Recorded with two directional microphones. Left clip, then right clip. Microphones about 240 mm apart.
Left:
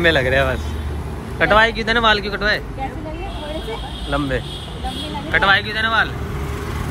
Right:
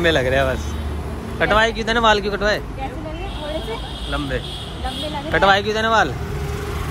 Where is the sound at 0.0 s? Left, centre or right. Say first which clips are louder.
Left 1 dB; centre.